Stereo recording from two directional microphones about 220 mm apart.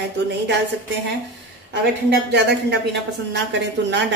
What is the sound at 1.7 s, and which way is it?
Speech, 50° right (ahead or behind).